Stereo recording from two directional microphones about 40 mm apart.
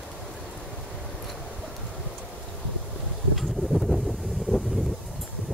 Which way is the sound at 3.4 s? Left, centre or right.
Centre.